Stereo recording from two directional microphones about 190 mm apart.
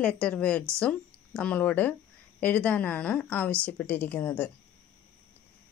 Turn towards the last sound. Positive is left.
turn(degrees=10)  # may be behind; listen again after turning